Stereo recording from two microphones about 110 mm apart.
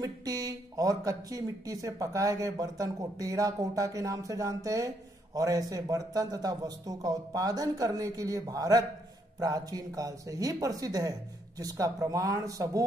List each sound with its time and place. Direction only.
0.0 s speech: 35° right (ahead or behind)